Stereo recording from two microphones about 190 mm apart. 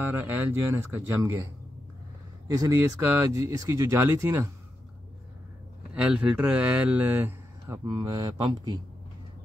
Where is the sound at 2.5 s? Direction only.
15° right (ahead or behind).